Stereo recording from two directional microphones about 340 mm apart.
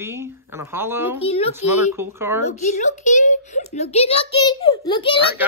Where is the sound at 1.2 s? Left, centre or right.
Centre.